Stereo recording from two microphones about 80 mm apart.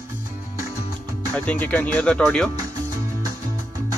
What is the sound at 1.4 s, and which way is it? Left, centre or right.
Speech, left.